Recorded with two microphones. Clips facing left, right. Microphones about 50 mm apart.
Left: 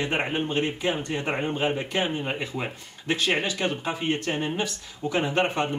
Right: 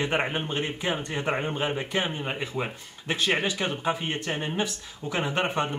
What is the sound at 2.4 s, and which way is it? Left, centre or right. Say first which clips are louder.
Speech: even; centre.